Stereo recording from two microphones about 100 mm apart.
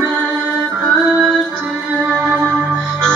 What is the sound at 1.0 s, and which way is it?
Music, 10° right (ahead or behind).